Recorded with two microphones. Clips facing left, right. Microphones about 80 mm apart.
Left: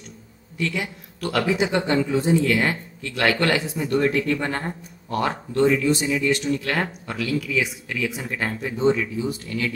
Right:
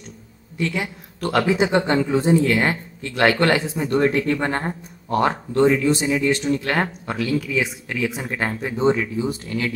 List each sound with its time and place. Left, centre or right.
0.6 s speech: right